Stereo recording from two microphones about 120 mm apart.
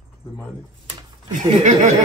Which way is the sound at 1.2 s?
90° right.